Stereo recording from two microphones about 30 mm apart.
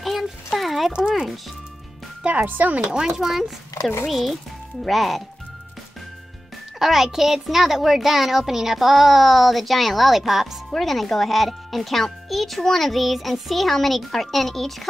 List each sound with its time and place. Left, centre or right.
0.6 s a sound: centre
0.9 s speech: right
2.4 s speech: right
2.9 s speech: right
3.3 s a child's voice: centre
6.8 s a child's voice: centre
10.7 s a child's voice: centre